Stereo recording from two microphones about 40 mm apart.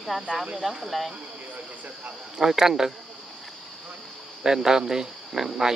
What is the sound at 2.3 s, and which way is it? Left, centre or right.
Speech, centre.